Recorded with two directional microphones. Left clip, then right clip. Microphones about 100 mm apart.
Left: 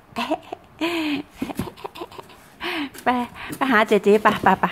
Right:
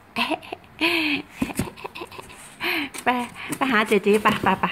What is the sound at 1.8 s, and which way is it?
Speech, 25° left (ahead or behind).